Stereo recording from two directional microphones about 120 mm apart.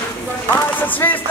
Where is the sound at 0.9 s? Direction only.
15° left (ahead or behind).